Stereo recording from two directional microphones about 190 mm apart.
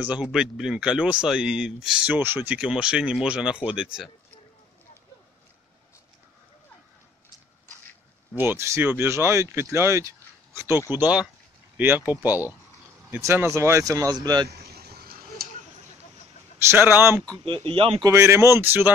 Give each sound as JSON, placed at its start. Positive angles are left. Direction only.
{"t": 0.0, "sound": "speech", "side_deg": -5}
{"t": 8.4, "sound": "speech", "side_deg": -15}
{"t": 14.7, "sound": "vehicle", "side_deg": -55}
{"t": 16.5, "sound": "speech", "side_deg": -10}
{"t": 17.6, "sound": "speech", "side_deg": -30}
{"t": 18.1, "sound": "speech", "side_deg": -15}